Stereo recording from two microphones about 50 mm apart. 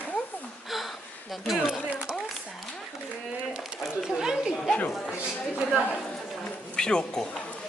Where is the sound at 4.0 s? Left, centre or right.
Centre.